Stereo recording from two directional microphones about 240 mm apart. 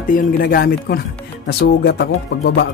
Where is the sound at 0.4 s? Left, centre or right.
Left.